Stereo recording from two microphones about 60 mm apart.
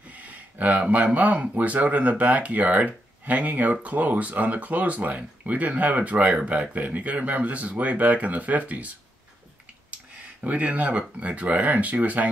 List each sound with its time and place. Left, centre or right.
0.1 s speech: right
10.4 s speech: right